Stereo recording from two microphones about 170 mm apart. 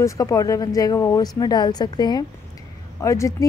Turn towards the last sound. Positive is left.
turn(degrees=20)  # may be behind; listen again after turning